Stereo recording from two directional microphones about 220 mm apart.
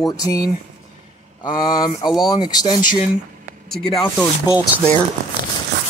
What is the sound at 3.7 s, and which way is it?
Speech, centre (ahead or behind).